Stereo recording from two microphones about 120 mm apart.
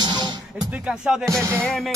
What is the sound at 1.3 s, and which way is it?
Music, 20° right (ahead or behind).